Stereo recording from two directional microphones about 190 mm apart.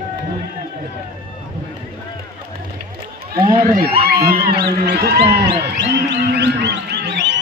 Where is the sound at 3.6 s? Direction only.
55° right (ahead or behind).